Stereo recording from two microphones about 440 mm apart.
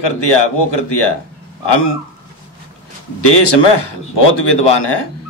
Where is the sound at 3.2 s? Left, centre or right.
Left.